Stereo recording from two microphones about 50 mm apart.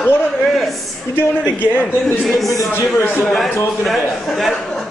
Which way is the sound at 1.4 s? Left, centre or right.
Left.